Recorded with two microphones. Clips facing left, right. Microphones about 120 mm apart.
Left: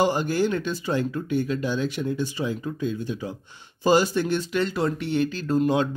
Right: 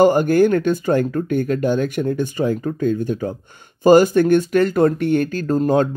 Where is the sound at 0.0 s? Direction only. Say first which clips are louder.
Right 9 dB; 50° right (ahead or behind).